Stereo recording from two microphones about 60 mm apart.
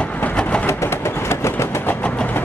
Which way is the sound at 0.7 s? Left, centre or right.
Left.